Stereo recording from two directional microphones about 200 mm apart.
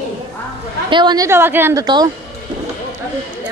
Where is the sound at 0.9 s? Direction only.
20° right (ahead or behind).